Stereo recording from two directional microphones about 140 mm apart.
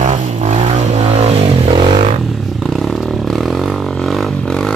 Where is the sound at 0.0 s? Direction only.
55° right (ahead or behind).